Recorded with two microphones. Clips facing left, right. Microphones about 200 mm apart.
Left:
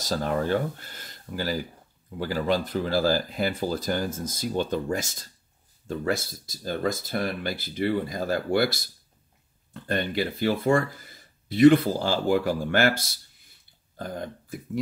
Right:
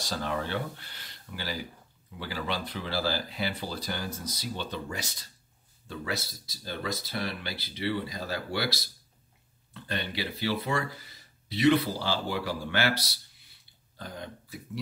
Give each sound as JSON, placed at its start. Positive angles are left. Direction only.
{"t": 0.0, "sound": "speech", "side_deg": 40}